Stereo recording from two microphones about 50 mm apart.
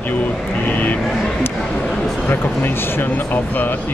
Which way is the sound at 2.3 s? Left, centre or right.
Left.